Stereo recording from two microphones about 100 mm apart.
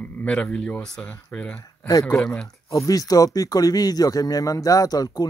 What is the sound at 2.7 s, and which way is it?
Speech, 35° left (ahead or behind).